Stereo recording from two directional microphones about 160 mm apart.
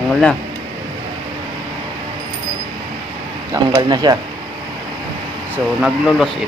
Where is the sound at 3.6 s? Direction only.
25° right (ahead or behind).